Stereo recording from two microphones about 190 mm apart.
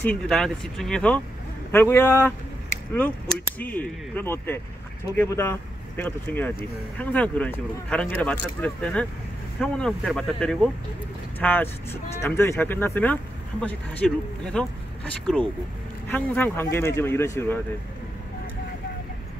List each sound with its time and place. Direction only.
0.0 s speech: 5° left (ahead or behind)
3.5 s speech: 10° left (ahead or behind)